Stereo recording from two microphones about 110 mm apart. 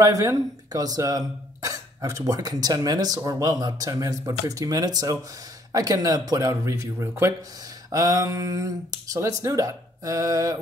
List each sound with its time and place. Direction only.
0.0 s speech: 30° right (ahead or behind)